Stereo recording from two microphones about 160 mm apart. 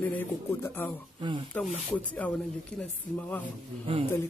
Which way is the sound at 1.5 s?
10° left (ahead or behind).